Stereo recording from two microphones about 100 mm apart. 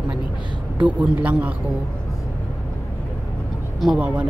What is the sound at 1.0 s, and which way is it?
Speech, 15° right (ahead or behind).